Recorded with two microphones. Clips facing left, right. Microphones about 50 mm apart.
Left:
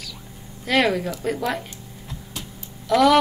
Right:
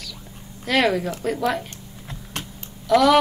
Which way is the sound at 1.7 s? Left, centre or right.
Right.